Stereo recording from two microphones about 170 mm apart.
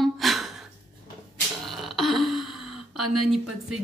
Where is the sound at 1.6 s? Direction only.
Centre (ahead or behind).